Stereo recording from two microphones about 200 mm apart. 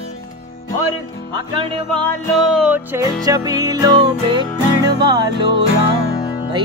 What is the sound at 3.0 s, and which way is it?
Music, 20° right (ahead or behind).